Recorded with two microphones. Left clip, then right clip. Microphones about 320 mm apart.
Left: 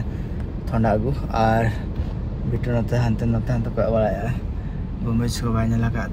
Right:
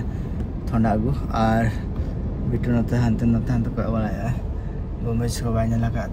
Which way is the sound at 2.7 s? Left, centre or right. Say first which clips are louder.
Even; left.